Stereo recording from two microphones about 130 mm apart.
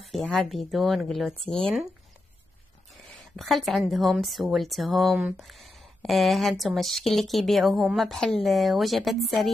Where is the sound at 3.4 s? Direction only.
Centre (ahead or behind).